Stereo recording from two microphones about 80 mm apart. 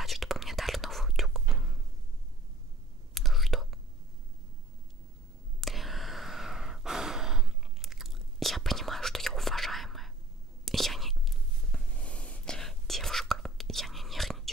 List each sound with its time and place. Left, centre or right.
0.0 s whispering: centre
3.2 s whispering: centre
5.6 s sigh: centre
10.6 s whispering: centre
12.5 s whispering: centre